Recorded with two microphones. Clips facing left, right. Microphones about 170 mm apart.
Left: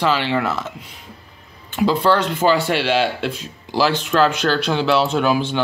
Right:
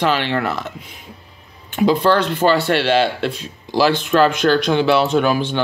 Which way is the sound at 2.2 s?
10° left (ahead or behind).